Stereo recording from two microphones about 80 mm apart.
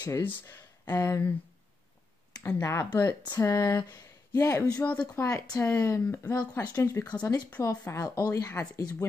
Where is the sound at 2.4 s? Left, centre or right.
Left.